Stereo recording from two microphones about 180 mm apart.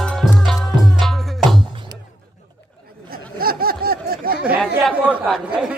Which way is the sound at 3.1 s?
55° right (ahead or behind).